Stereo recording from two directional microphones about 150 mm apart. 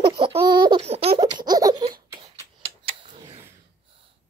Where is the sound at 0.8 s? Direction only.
45° right (ahead or behind).